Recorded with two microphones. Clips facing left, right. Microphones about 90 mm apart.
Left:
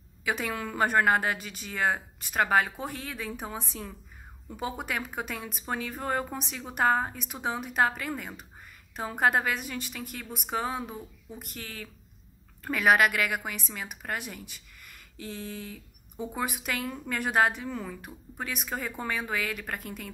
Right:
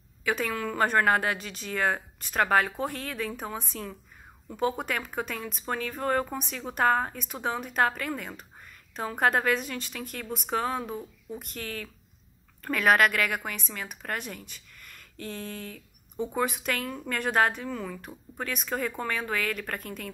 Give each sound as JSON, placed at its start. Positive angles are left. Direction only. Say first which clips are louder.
{"t": 0.2, "sound": "a woman's voice", "louder": "right 2 dB", "side_deg": 15}
{"t": 15.3, "sound": "speech", "louder": "even", "side_deg": -60}
{"t": 15.6, "sound": "a sound", "louder": "right 1 dB", "side_deg": 15}
{"t": 16.3, "sound": "a woman's voice", "louder": "right 3 dB", "side_deg": 15}